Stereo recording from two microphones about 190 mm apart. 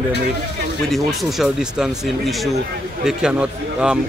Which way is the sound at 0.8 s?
Centre (ahead or behind).